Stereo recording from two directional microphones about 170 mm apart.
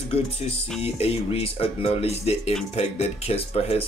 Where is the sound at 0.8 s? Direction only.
35° left (ahead or behind).